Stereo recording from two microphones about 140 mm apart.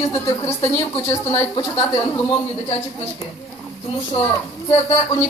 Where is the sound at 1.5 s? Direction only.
35° left (ahead or behind).